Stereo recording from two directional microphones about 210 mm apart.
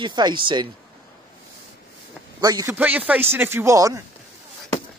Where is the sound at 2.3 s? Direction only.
15° right (ahead or behind).